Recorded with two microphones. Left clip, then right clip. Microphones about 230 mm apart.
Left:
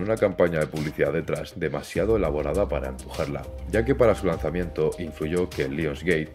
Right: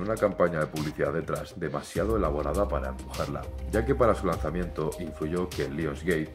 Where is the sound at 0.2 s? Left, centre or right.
Left.